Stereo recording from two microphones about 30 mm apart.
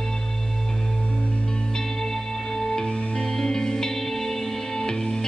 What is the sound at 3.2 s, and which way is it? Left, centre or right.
Music, left.